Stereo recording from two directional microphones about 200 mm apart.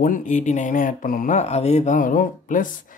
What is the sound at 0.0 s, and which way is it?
Speech, 40° left (ahead or behind).